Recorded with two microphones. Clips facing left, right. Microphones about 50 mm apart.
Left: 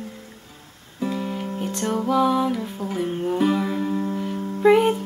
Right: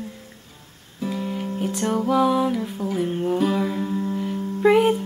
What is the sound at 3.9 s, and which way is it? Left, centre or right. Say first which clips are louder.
Music: even; centre.